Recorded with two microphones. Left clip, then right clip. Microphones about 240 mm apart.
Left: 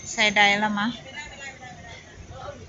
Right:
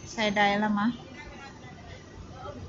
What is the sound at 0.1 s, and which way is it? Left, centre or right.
Speech, centre.